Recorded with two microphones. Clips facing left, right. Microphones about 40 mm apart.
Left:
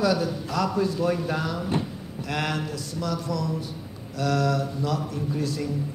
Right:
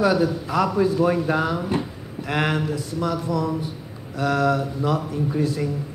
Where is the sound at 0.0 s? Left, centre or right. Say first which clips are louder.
Right 4 dB; centre.